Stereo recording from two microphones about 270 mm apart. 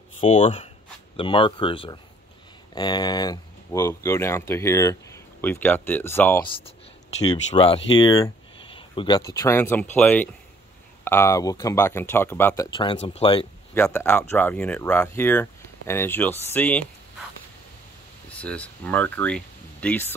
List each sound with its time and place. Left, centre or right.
0.2 s speech: left
7.2 s speech: centre
13.7 s speech: centre
18.4 s speech: centre